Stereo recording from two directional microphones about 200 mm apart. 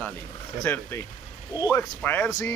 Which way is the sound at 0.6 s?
10° left (ahead or behind).